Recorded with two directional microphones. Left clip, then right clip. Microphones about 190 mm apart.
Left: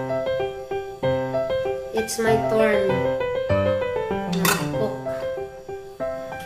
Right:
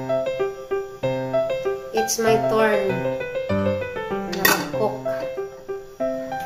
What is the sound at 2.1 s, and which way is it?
Speech, 20° left (ahead or behind).